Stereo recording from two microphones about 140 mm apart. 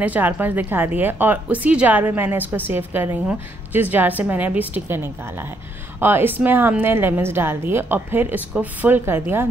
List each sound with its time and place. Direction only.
0.0 s a woman's voice: 10° right (ahead or behind)